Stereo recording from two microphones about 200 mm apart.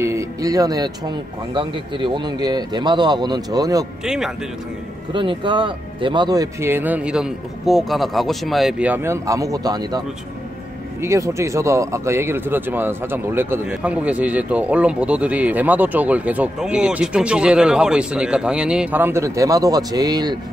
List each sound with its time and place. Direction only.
0.0 s speech: 15° right (ahead or behind)
4.0 s speech: centre (ahead or behind)
5.1 s speech: 25° right (ahead or behind)